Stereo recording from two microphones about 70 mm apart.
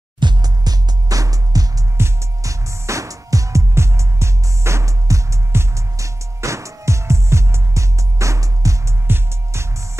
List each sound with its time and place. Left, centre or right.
0.2 s music: right
2.0 s music: right
9.0 s music: right